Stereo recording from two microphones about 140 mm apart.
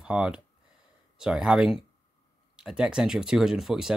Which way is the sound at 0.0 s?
5° right (ahead or behind).